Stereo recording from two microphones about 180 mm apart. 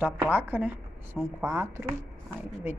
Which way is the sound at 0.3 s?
10° right (ahead or behind).